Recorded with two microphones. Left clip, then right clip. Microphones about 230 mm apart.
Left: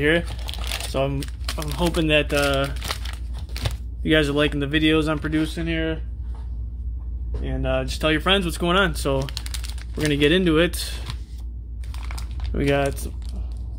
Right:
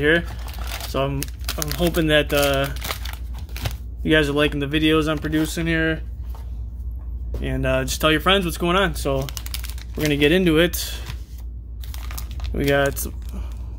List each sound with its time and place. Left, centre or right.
0.9 s speech: centre; by 5.9 s right
7.4 s speech: right
8.1 s speech: centre
12.5 s speech: centre